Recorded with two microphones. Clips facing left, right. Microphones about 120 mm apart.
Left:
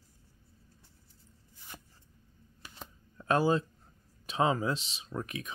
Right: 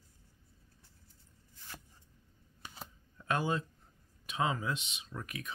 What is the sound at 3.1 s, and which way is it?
Speech, 35° left (ahead or behind).